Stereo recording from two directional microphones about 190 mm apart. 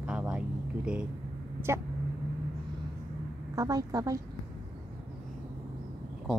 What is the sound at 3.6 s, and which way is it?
Speech, 20° right (ahead or behind).